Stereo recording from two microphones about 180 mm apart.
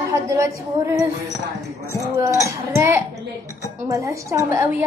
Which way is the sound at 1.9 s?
15° right (ahead or behind).